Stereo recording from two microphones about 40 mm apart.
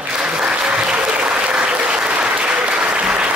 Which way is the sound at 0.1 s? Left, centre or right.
Right.